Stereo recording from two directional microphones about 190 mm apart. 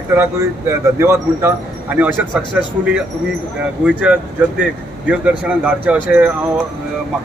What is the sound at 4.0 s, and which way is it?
A man's voice, 5° right (ahead or behind).